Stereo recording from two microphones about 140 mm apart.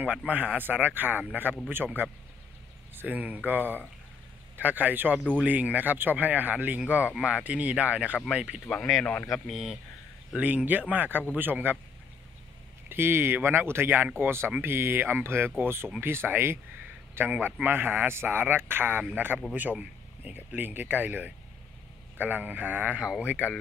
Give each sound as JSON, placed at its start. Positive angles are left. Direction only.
{"t": 0.0, "sound": "a man's voice", "side_deg": -10}
{"t": 8.6, "sound": "speech", "side_deg": 5}
{"t": 9.3, "sound": "a man's voice", "side_deg": 0}
{"t": 12.8, "sound": "a man's voice", "side_deg": -15}
{"t": 23.2, "sound": "speech", "side_deg": 10}